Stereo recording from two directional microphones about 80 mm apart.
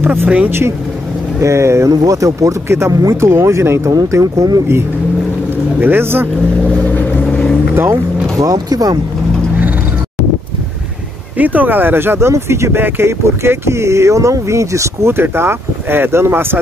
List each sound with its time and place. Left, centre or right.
0.0 s speech: right
5.8 s speech: right
6.8 s vehicle: left
7.2 s vehicle: centre
7.7 s speech: right
8.4 s speech: right
11.3 s speech: right